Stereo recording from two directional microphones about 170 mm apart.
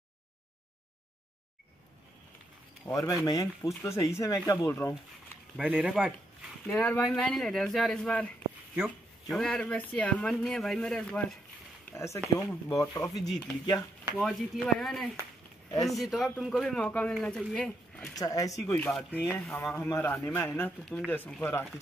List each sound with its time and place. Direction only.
2.8 s speech: 20° left (ahead or behind)
5.6 s speech: 5° right (ahead or behind)
6.6 s speech: 5° left (ahead or behind)
11.9 s speech: 15° left (ahead or behind)
13.1 s speech: centre (ahead or behind)
13.7 s speech: 20° left (ahead or behind)
14.8 s speech: centre (ahead or behind)
18.1 s speech: 20° left (ahead or behind)